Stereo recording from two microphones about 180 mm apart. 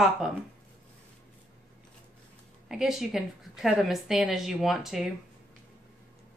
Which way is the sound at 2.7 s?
5° right (ahead or behind).